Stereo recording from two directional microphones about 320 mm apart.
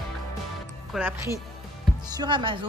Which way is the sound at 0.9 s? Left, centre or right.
Centre.